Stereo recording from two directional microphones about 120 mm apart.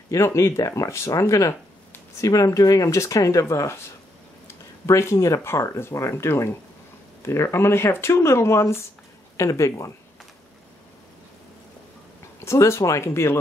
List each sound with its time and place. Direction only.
0.1 s speech: 25° left (ahead or behind)
4.8 s speech: 25° left (ahead or behind)
12.4 s speech: 25° left (ahead or behind)